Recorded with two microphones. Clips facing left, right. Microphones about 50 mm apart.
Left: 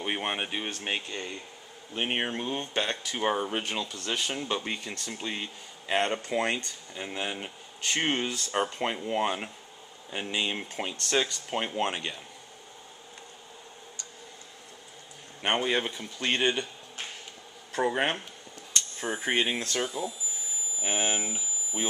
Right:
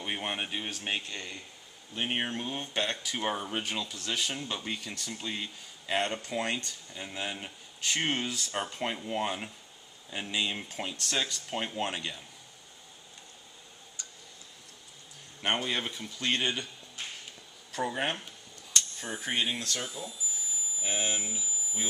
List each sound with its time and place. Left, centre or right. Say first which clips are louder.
0.0 s speech: left 3 dB; left
2.6 s speech: left 2 dB; centre
15.4 s speech: left 4 dB; centre
17.7 s speech: left 5 dB; left